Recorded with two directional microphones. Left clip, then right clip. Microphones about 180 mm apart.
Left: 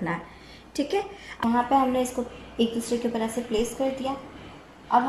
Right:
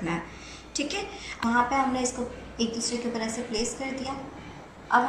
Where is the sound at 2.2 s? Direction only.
35° left (ahead or behind).